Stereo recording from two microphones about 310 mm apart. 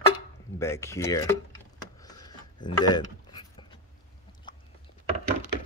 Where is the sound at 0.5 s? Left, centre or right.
Centre.